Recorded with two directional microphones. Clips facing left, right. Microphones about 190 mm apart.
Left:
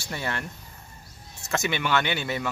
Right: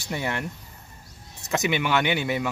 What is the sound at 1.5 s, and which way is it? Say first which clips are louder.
Speech: right 2 dB; 15° right (ahead or behind).